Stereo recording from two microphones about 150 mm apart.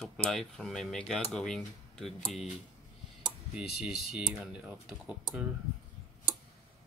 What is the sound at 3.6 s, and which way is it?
Speech, 5° right (ahead or behind).